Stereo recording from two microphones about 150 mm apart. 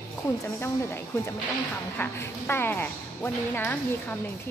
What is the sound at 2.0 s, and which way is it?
Speech, 15° left (ahead or behind).